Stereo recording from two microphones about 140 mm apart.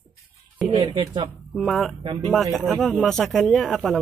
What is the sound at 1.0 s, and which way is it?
Speech, 30° right (ahead or behind).